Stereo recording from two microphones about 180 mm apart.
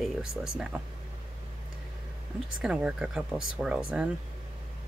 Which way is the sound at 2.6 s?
5° right (ahead or behind).